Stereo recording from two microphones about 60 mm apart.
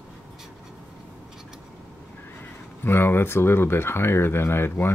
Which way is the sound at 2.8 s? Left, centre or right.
Left.